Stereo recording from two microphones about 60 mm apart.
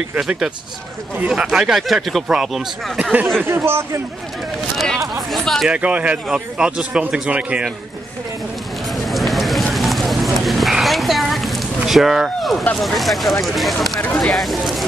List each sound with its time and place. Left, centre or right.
1.3 s speech: centre
3.0 s a man's voice: right
3.4 s speech: right
4.7 s speech: centre
5.7 s a man's voice: right
8.9 s run: centre
9.8 s horse: centre
11.8 s speech: centre
14.0 s speech: left
14.3 s speech: centre